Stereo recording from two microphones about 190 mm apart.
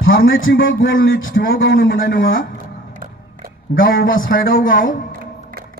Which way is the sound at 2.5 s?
50° right (ahead or behind).